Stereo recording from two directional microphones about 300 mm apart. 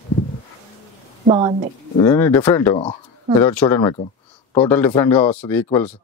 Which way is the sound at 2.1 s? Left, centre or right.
Centre.